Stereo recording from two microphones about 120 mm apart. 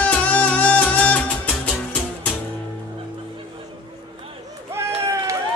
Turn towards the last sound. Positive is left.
turn(degrees=-25)  # may be behind; listen again after turning